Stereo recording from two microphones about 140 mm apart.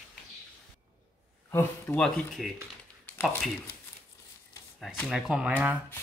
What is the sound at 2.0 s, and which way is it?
Rub, 5° left (ahead or behind).